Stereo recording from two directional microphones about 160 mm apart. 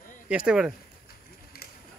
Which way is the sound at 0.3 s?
5° right (ahead or behind).